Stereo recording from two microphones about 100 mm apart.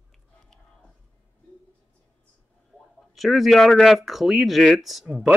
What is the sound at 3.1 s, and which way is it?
Speech, centre (ahead or behind).